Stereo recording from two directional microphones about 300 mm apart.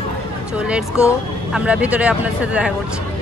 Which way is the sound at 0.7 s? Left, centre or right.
Centre.